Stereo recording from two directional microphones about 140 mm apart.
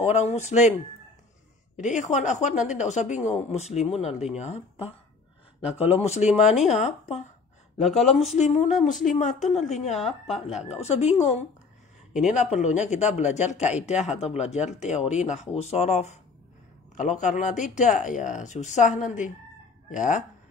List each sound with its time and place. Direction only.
0.0 s speech: 50° left (ahead or behind)
1.8 s speech: 60° left (ahead or behind)
7.8 s speech: centre (ahead or behind)
8.4 s speech: 55° left (ahead or behind)
9.9 s speech: centre (ahead or behind)
10.9 s speech: 55° left (ahead or behind)
12.5 s speech: 55° left (ahead or behind)